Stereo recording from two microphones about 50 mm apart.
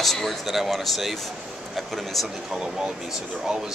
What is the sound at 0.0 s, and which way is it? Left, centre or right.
Speech, centre.